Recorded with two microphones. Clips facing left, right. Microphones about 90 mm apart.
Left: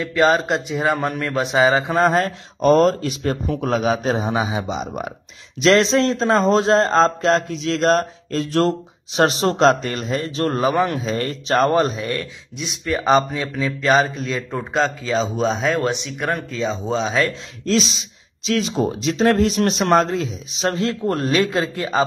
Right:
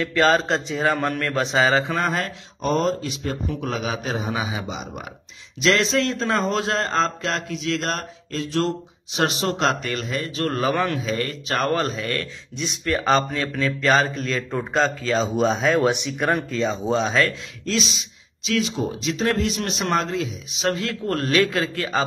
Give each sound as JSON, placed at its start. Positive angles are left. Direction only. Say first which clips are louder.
{"t": 0.0, "sound": "speech", "louder": "left 2 dB", "side_deg": 10}
{"t": 2.0, "sound": "a man's voice", "louder": "left 7 dB", "side_deg": 35}
{"t": 2.6, "sound": "a man's voice", "louder": "left 7 dB", "side_deg": 60}
{"t": 11.1, "sound": "a man's voice", "louder": "left 4 dB", "side_deg": 30}
{"t": 12.5, "sound": "speech", "louder": "left 1 dB", "side_deg": 5}
{"t": 17.3, "sound": "a man's voice", "louder": "left 6 dB", "side_deg": 35}